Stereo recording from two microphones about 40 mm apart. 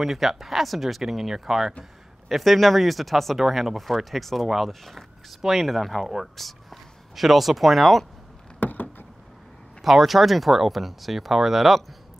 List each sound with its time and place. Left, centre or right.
0.0 s a man's voice: centre
8.5 s a sound: left
9.8 s speech: centre